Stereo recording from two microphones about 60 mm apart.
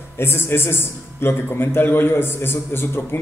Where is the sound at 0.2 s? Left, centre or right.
Left.